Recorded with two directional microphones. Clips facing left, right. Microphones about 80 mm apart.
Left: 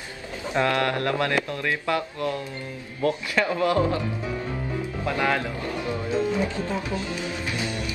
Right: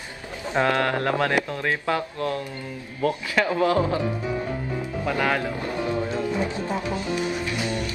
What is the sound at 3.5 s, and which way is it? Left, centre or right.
Speech, right.